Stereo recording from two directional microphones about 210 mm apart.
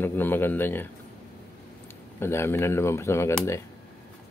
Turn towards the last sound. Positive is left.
turn(degrees=15)  # may be behind; listen again after turning